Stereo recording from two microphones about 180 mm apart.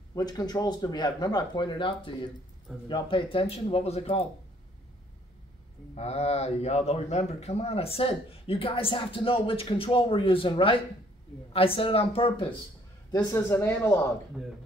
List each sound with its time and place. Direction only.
0.1 s speech: 20° left (ahead or behind)
5.9 s speech: 35° left (ahead or behind)
13.1 s speech: 20° left (ahead or behind)